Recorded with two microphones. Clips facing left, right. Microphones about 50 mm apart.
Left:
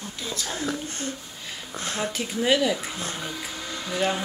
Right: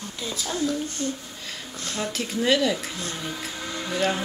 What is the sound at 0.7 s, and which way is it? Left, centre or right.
A child's voice, left.